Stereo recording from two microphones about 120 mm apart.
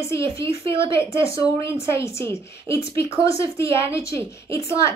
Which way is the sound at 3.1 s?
50° right (ahead or behind).